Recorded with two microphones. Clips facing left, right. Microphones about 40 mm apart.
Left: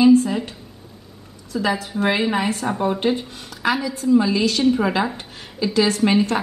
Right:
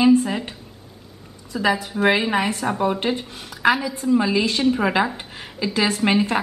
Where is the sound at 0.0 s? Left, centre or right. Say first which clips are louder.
Left 2 dB; right.